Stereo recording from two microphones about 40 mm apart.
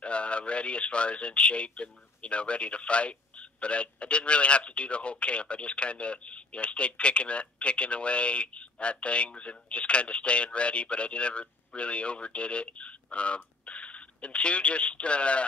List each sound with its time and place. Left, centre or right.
0.0 s speech: left